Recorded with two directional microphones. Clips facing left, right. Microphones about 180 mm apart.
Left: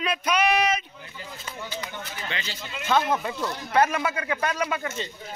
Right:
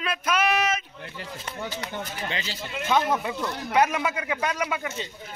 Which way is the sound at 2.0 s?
35° right (ahead or behind).